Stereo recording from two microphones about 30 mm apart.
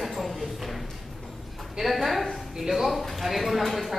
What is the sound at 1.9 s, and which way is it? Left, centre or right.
Speech, centre.